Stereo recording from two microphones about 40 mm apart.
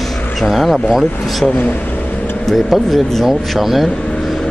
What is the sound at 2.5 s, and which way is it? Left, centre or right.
Speech, centre.